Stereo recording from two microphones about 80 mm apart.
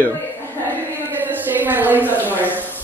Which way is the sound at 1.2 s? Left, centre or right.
Right.